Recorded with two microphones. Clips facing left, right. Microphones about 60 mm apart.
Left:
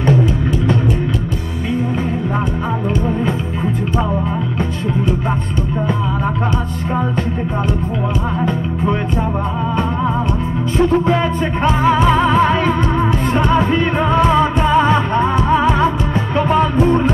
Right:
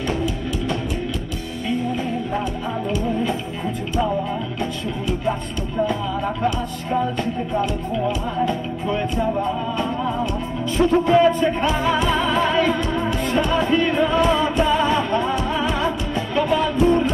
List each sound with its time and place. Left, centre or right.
0.0 s music: left
10.8 s music: left